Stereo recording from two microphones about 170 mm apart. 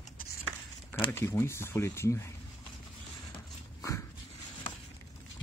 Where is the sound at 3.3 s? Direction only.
20° left (ahead or behind).